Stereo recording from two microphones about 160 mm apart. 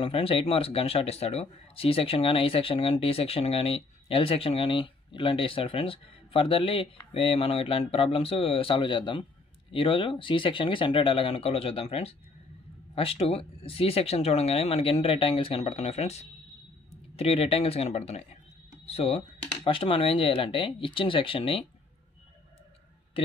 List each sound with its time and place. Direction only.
0.0 s speech: 35° left (ahead or behind)